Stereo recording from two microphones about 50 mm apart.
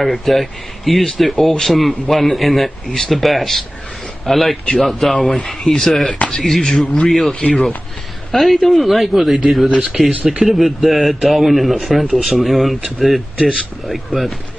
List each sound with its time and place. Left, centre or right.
0.0 s a man's voice: centre
7.3 s speech: centre
8.3 s a man's voice: centre